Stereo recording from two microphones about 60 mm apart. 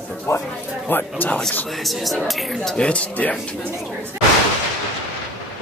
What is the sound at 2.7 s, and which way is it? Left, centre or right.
Speech, centre.